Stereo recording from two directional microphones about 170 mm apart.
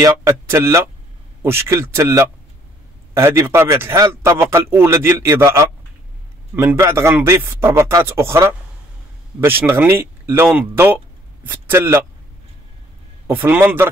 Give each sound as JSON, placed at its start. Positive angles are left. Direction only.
{"t": 0.0, "sound": "a man's voice", "side_deg": -15}
{"t": 13.3, "sound": "a man's voice", "side_deg": -10}